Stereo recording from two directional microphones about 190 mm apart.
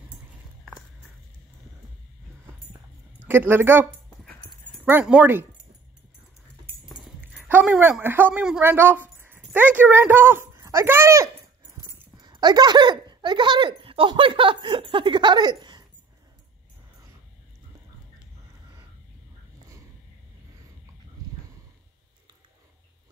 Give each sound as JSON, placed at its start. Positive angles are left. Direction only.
{"t": 3.3, "sound": "speech", "side_deg": -10}
{"t": 4.8, "sound": "speech", "side_deg": -5}
{"t": 7.3, "sound": "speech", "side_deg": -5}